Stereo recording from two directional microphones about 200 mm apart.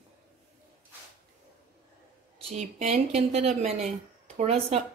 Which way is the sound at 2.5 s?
35° right (ahead or behind).